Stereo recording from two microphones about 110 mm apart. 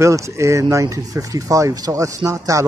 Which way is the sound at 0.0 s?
25° right (ahead or behind).